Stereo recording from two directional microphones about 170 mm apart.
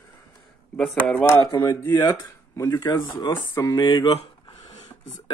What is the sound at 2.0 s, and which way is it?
Speech, 20° left (ahead or behind).